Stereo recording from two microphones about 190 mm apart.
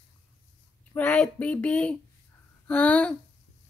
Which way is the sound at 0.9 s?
5° left (ahead or behind).